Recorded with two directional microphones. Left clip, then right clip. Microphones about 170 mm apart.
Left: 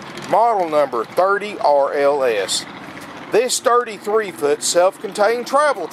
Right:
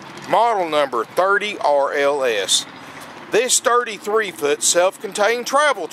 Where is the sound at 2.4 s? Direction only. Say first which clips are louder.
Right 3 dB; 50° right (ahead or behind).